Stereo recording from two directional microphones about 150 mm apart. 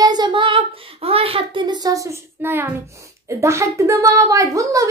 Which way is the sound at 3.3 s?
20° right (ahead or behind).